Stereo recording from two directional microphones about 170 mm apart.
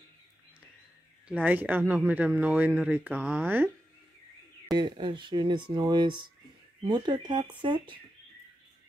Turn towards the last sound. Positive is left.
turn(degrees=-30)  # may be behind; listen again after turning